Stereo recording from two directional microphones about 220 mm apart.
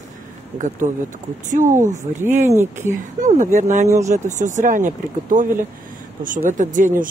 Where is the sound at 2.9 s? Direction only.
35° right (ahead or behind).